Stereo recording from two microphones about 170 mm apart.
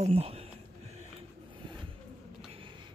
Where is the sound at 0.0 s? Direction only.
35° right (ahead or behind).